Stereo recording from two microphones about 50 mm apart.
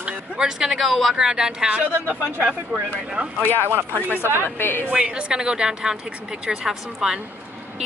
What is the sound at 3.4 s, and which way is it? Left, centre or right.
Speech, right.